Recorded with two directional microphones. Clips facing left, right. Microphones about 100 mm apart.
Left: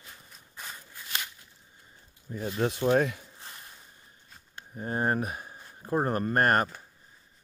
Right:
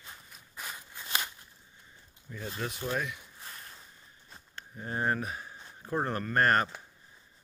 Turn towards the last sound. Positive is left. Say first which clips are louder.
# left 2 dB
turn(degrees=45)  # may be behind; listen again after turning